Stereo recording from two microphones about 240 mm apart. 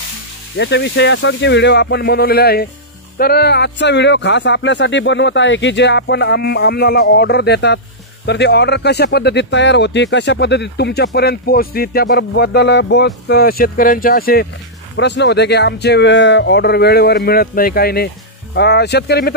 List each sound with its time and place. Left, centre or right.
0.6 s speech: left